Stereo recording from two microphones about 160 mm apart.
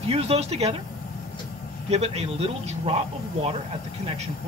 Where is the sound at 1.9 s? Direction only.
40° right (ahead or behind).